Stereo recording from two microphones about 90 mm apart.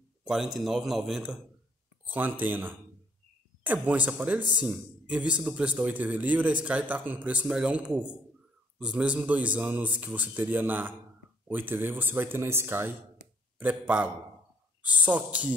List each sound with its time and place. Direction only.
0.2 s a man's voice: 5° right (ahead or behind)
2.0 s speech: 20° right (ahead or behind)
13.6 s speech: 15° right (ahead or behind)